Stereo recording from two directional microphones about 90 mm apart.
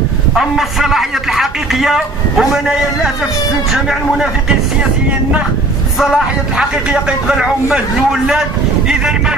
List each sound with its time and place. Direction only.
0.3 s a man's voice: 5° right (ahead or behind)
5.9 s a man's voice: 10° right (ahead or behind)